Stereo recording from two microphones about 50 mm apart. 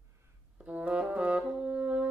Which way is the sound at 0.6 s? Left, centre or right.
Right.